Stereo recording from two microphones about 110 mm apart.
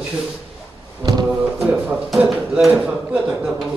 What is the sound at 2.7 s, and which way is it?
Speech, 15° right (ahead or behind).